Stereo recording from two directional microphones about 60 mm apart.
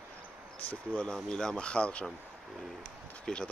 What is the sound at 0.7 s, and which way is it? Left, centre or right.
Speech, left.